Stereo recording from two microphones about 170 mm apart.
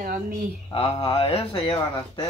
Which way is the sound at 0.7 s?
30° left (ahead or behind).